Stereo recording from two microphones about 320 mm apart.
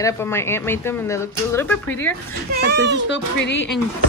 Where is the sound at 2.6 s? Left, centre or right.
Right.